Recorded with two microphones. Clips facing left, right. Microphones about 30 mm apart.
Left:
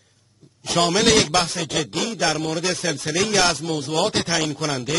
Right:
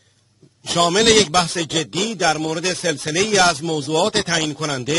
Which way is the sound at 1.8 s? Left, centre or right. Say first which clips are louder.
Right 3 dB; centre.